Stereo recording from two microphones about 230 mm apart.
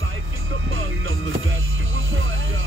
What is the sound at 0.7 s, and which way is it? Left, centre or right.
Music, right.